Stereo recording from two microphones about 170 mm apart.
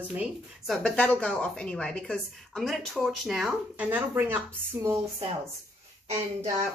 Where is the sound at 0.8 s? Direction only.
10° left (ahead or behind); by 4.4 s 10° right (ahead or behind).